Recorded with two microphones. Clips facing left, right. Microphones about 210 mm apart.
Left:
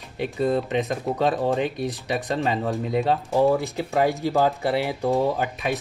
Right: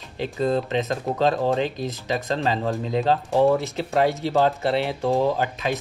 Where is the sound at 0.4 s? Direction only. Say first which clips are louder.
Even; centre (ahead or behind).